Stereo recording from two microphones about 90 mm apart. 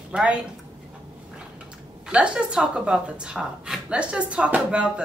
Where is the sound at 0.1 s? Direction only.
10° right (ahead or behind).